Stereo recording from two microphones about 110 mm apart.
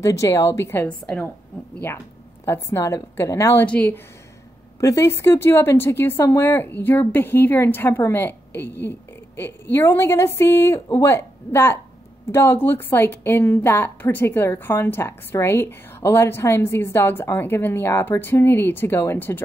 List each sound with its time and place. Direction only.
0.0 s a woman's voice: 25° left (ahead or behind)
0.8 s a woman's voice: 10° left (ahead or behind)
2.4 s a woman's voice: 25° left (ahead or behind)
3.6 s a woman's voice: 15° left (ahead or behind)
4.7 s a woman's voice: 25° left (ahead or behind)